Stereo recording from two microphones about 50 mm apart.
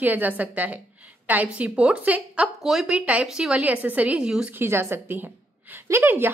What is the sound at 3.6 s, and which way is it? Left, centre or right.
Speech, right.